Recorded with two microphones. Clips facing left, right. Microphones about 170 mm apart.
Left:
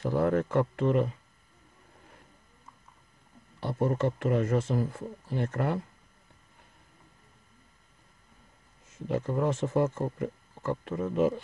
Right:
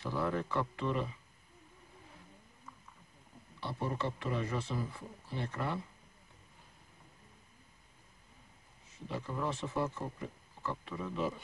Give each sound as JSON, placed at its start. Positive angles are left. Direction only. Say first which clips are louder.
{"t": 0.0, "sound": "speech", "louder": "left 9 dB", "side_deg": 50}
{"t": 3.6, "sound": "speech", "louder": "left 9 dB", "side_deg": 45}
{"t": 8.9, "sound": "speech", "louder": "left 10 dB", "side_deg": 45}